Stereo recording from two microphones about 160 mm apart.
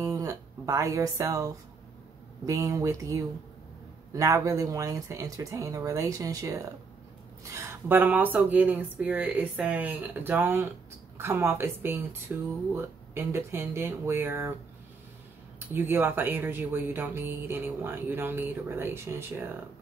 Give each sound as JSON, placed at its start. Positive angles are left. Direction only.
{"t": 0.0, "sound": "speech", "side_deg": -20}
{"t": 15.7, "sound": "speech", "side_deg": -10}